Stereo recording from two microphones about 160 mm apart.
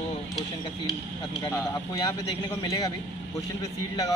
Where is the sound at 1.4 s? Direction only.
15° left (ahead or behind).